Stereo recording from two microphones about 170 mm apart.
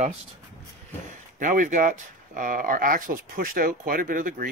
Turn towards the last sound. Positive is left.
turn(degrees=-55)  # may be behind; listen again after turning